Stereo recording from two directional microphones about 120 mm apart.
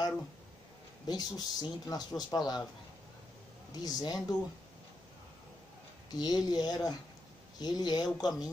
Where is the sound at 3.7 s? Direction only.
35° left (ahead or behind).